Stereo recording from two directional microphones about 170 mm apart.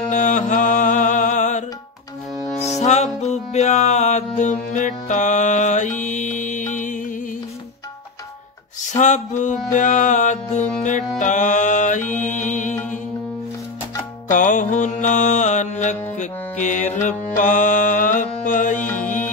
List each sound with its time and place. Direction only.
0.1 s music: 45° left (ahead or behind)
2.6 s music: 40° left (ahead or behind)
8.8 s music: 45° left (ahead or behind)
14.3 s mantra: 50° left (ahead or behind)
18.9 s music: 50° left (ahead or behind)